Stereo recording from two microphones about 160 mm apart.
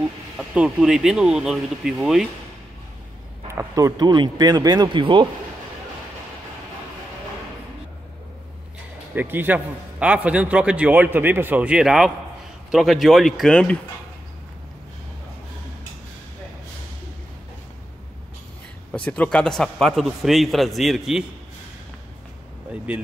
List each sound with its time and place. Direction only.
0.4 s a man's voice: 5° right (ahead or behind)
3.4 s speech: 20° right (ahead or behind)
9.1 s a man's voice: 10° right (ahead or behind); by 13.7 s 5° left (ahead or behind)
18.9 s a man's voice: 5° left (ahead or behind)
22.9 s a man's voice: 5° right (ahead or behind)